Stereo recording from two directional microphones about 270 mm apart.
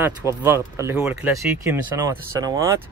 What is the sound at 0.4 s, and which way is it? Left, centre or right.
A man's voice, centre.